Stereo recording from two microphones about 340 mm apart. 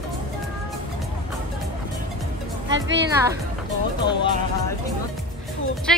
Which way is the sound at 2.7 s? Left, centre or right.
Right.